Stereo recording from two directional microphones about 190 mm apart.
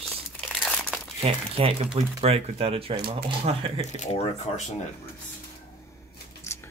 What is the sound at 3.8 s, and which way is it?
Speech, 35° left (ahead or behind).